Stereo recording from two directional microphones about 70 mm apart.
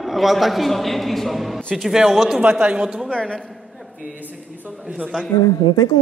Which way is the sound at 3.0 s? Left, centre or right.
Centre.